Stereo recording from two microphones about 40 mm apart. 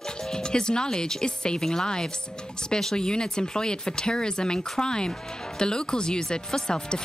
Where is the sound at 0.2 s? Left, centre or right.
Centre.